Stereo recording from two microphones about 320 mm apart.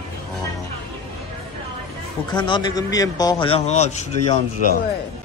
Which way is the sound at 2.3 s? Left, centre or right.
Centre.